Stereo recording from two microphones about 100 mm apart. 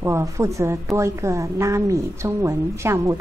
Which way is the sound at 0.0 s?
30° right (ahead or behind).